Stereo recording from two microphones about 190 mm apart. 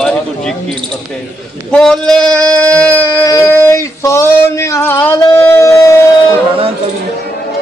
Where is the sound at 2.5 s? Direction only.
5° left (ahead or behind).